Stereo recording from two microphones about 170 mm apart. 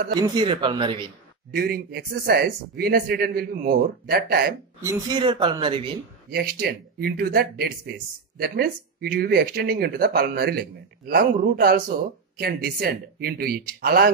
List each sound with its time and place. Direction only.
0.1 s speech: 25° right (ahead or behind)
1.5 s speech: 65° right (ahead or behind)
4.8 s speech: 25° right (ahead or behind)
6.3 s speech: 60° right (ahead or behind)